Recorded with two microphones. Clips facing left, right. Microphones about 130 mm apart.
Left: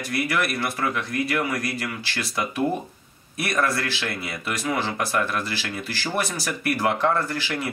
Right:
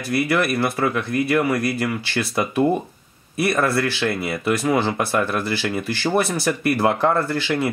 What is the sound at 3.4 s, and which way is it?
Speech, 25° right (ahead or behind).